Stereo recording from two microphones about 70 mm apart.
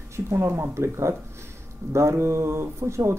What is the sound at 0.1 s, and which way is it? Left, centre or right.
Speech, right.